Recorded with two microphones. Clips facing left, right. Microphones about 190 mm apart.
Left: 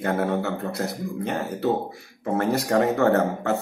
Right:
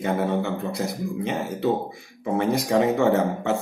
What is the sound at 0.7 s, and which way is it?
Speech, 65° left (ahead or behind).